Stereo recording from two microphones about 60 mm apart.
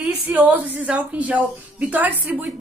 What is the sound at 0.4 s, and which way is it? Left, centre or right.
A woman's voice, right.